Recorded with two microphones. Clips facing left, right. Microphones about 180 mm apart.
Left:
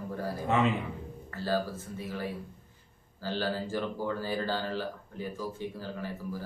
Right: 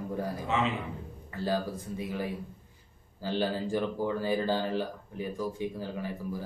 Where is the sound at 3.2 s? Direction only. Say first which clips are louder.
Right 2 dB; 15° right (ahead or behind).